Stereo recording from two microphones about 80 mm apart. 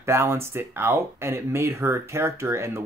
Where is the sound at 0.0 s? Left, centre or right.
Right.